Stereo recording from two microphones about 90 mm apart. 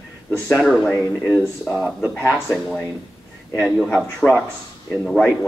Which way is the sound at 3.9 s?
5° right (ahead or behind).